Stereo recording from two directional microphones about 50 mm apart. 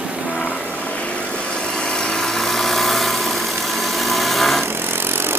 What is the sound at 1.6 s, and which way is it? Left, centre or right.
Vehicle, centre.